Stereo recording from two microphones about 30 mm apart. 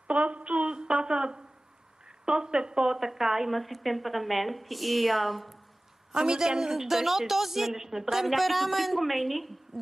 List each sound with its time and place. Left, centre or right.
0.1 s speech: right
0.7 s a sound: right
2.2 s a woman's voice: right
2.9 s a woman's voice: centre
3.5 s a woman's voice: centre
6.1 s a woman's voice: right
8.3 s a woman's voice: centre